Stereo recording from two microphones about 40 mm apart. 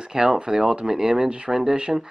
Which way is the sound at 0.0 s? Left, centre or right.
Centre.